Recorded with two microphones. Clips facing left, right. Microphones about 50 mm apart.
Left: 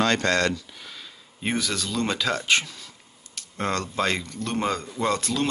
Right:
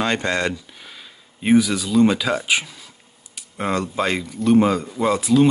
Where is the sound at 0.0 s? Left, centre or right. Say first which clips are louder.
Right 1 dB; centre.